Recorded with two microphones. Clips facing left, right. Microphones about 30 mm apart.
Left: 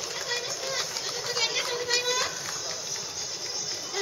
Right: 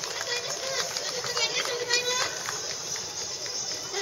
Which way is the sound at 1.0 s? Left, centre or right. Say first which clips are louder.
Left 2 dB; centre.